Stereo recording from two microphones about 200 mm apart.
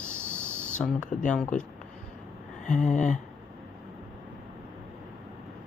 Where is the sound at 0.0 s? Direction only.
10° right (ahead or behind).